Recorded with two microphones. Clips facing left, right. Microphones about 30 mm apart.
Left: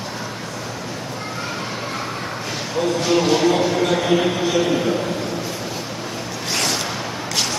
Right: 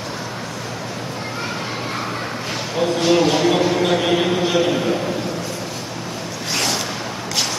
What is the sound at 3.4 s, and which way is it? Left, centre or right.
Speech, centre.